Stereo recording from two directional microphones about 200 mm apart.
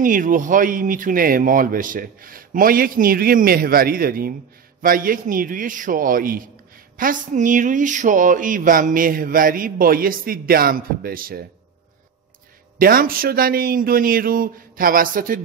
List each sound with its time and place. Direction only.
0.0 s speech: 40° right (ahead or behind)
12.7 s speech: 45° right (ahead or behind)